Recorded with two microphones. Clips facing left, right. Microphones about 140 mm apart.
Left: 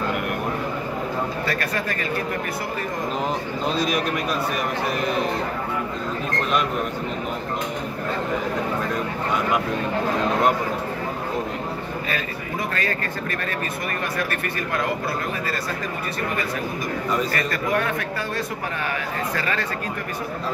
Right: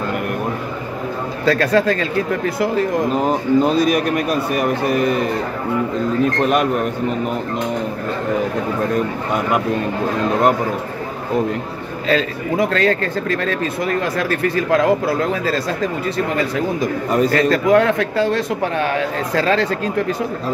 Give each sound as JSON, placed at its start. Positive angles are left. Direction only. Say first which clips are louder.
{"t": 1.4, "sound": "speech", "louder": "right 11 dB", "side_deg": -90}
{"t": 3.2, "sound": "a man's voice", "louder": "right 10 dB", "side_deg": -45}
{"t": 6.4, "sound": "a man's voice", "louder": "right 4 dB", "side_deg": -55}
{"t": 12.1, "sound": "speech", "louder": "right 10 dB", "side_deg": -90}
{"t": 17.3, "sound": "a man's voice", "louder": "right 10 dB", "side_deg": -80}